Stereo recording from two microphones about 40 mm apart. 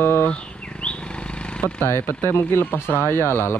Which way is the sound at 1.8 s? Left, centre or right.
Left.